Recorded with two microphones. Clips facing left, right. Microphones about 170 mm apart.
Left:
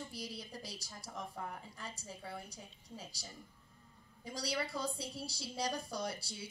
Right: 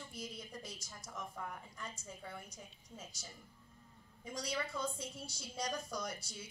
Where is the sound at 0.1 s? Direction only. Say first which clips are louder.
Left 1 dB; 35° left (ahead or behind).